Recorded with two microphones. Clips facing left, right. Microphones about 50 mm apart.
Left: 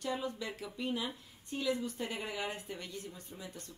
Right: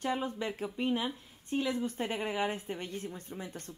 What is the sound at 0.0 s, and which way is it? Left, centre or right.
A woman's voice, right.